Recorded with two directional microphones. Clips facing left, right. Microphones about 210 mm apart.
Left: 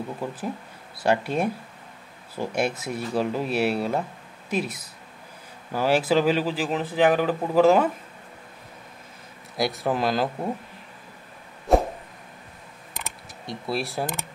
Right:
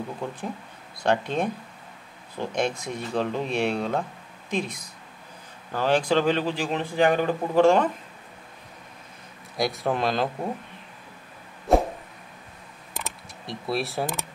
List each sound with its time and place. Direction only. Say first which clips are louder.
0.2 s speech: left 2 dB; 5° left (ahead or behind)
9.6 s speech: left 1 dB; centre (ahead or behind)
11.7 s a sound: left 1 dB; centre (ahead or behind)
12.9 s camera: right 2 dB; centre (ahead or behind)